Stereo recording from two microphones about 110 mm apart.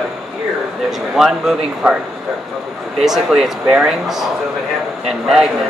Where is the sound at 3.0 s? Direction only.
5° right (ahead or behind).